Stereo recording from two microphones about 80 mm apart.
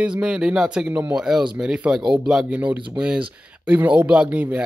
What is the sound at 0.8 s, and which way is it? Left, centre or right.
Speech, right.